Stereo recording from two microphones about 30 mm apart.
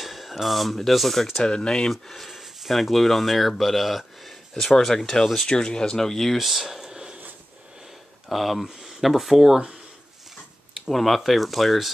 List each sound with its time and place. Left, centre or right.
0.0 s speech: centre
1.4 s speech: left
1.9 s speech: centre
4.6 s speech: centre
5.5 s speech: left
6.3 s speech: centre
6.9 s a sound: right
8.3 s speech: centre
10.9 s speech: centre